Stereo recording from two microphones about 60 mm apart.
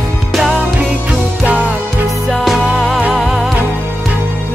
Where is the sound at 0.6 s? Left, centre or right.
Centre.